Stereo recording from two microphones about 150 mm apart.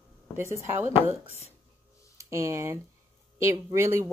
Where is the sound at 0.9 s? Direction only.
45° left (ahead or behind).